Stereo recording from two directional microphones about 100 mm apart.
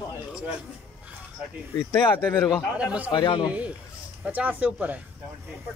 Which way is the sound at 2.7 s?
10° right (ahead or behind).